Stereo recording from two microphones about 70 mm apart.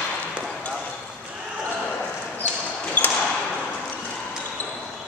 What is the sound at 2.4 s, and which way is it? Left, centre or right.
Basketball bounce, left.